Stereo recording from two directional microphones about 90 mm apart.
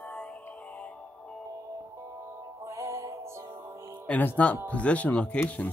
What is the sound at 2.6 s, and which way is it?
Music, 35° right (ahead or behind).